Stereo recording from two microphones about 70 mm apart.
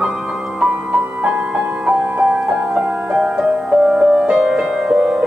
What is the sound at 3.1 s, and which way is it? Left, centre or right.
Music, centre.